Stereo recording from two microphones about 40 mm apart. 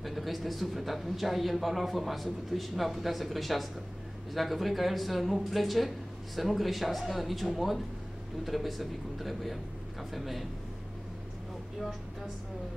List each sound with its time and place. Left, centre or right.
0.0 s speech: centre